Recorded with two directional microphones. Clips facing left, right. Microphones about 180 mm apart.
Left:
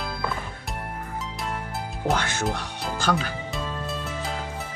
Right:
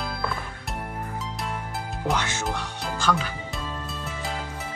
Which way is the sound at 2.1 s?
55° left (ahead or behind).